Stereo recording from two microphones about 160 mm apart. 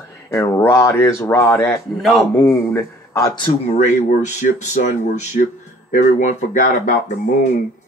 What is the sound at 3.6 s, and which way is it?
Speech, 45° left (ahead or behind).